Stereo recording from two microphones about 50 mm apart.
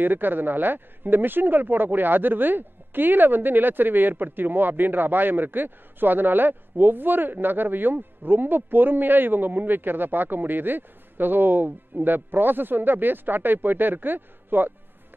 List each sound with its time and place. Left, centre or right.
0.0 s speech: right